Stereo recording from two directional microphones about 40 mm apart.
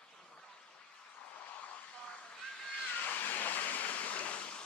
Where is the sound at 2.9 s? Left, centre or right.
Left.